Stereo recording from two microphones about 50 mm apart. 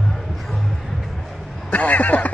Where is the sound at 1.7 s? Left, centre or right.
Left.